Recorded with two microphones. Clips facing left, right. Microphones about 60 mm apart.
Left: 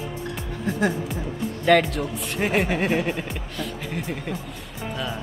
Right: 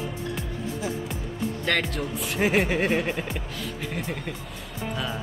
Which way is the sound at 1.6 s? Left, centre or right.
Centre.